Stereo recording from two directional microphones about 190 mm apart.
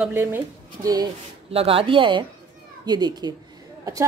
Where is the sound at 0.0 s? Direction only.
10° right (ahead or behind).